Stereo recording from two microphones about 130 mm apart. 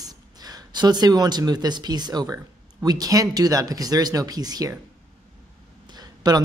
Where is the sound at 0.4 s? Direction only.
30° right (ahead or behind).